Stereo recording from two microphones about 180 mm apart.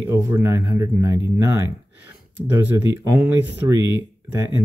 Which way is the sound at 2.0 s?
10° right (ahead or behind).